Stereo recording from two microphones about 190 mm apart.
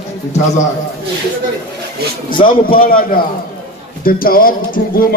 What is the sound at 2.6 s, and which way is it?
Speech, 50° left (ahead or behind).